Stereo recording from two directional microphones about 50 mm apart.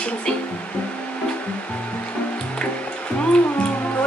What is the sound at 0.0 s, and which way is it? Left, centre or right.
Speech, left.